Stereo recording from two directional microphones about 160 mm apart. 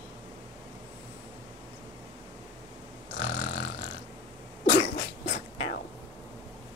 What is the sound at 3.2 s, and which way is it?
Snoring, 80° left.